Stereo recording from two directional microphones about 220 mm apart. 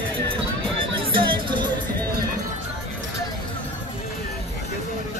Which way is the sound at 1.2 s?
20° right (ahead or behind).